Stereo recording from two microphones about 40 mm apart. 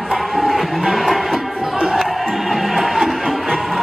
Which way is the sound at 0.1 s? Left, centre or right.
Centre.